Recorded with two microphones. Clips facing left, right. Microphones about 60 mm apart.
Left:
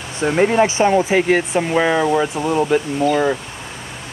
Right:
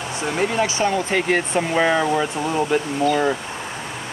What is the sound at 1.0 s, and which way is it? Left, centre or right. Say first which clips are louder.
Speech: left 4 dB; centre.